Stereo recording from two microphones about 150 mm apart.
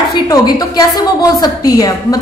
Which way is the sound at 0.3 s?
25° left (ahead or behind).